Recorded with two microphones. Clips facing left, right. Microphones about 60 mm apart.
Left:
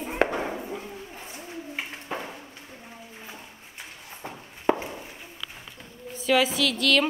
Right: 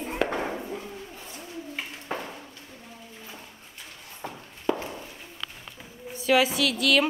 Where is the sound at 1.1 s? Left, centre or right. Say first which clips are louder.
Left 1 dB; left.